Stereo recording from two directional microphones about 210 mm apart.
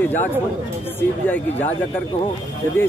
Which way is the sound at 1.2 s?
10° left (ahead or behind).